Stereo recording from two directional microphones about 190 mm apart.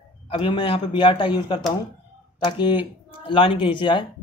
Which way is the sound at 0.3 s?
25° left (ahead or behind).